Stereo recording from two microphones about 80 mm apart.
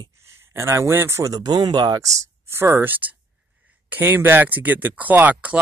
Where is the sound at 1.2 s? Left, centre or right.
Right.